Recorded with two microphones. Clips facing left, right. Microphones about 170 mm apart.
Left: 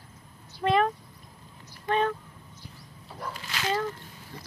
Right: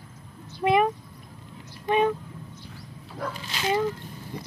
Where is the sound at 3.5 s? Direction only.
15° right (ahead or behind).